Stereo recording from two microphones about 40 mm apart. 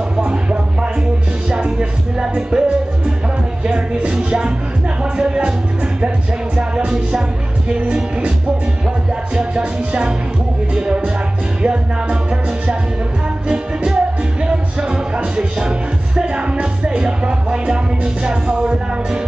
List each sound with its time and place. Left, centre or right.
0.2 s music: right
3.6 s music: right
9.3 s music: right
13.5 s music: centre